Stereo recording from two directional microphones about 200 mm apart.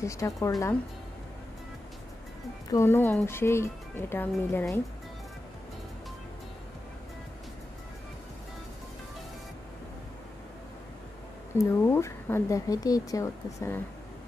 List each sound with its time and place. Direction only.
0.0 s a woman's voice: 15° left (ahead or behind)
2.7 s a woman's voice: 10° left (ahead or behind)
11.5 s a woman's voice: 10° left (ahead or behind)